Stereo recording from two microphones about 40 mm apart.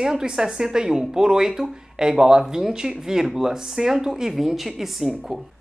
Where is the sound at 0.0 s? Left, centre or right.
Centre.